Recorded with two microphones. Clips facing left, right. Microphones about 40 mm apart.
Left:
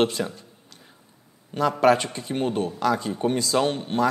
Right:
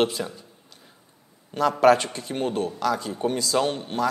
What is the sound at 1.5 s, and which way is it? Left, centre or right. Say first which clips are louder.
Speech: right 1 dB; centre.